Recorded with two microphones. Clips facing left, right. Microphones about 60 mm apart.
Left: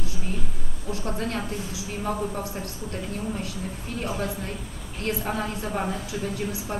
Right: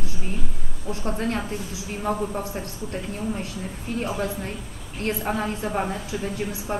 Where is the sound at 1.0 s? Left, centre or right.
Right.